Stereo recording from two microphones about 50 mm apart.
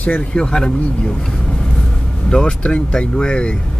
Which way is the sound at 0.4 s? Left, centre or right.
Centre.